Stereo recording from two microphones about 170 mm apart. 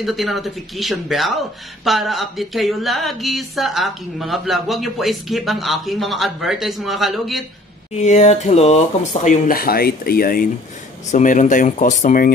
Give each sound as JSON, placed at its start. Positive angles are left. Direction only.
{"t": 0.0, "sound": "speech", "side_deg": 0}
{"t": 7.9, "sound": "speech", "side_deg": 40}
{"t": 11.1, "sound": "speech", "side_deg": 45}